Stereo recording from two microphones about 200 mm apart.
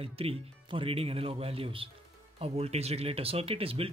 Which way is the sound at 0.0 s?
30° right (ahead or behind).